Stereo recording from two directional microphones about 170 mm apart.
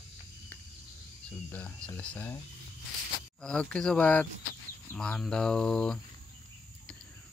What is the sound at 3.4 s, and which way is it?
Speech, 5° left (ahead or behind).